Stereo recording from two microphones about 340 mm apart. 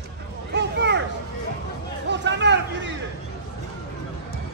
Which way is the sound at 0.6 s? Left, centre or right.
Right.